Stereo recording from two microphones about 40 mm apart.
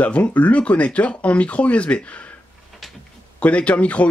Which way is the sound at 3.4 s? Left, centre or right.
Left.